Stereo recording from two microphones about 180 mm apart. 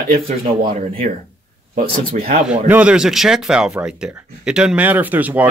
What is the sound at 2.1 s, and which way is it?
Speech, 50° right (ahead or behind).